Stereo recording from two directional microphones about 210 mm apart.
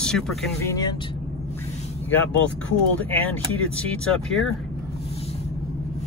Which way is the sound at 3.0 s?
5° left (ahead or behind).